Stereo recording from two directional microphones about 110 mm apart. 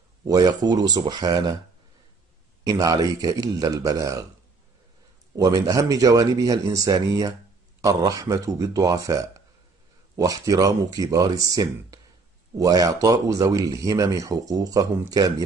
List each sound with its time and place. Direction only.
0.3 s speech: 35° right (ahead or behind)
2.6 s speech: 30° right (ahead or behind)
5.3 s speech: 35° right (ahead or behind)